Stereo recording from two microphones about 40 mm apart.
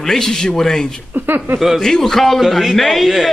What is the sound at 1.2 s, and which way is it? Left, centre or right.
Speech, right.